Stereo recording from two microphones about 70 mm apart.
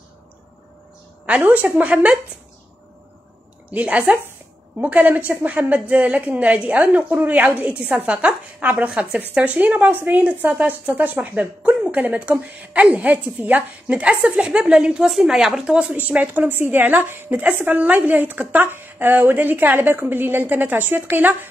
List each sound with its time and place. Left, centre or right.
1.2 s a woman's voice: right
3.7 s a woman's voice: right